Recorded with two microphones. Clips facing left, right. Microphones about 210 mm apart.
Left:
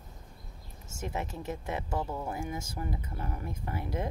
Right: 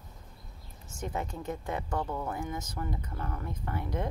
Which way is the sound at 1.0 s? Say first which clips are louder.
Right 1 dB; 25° left (ahead or behind).